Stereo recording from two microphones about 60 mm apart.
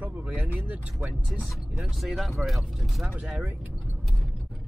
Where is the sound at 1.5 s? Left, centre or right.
Centre.